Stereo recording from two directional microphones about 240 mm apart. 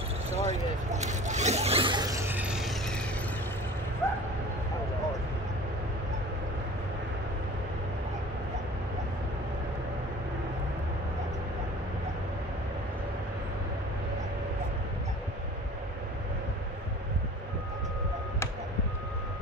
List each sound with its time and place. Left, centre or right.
0.3 s zipper: right; by 3.0 s centre
4.0 s dog: centre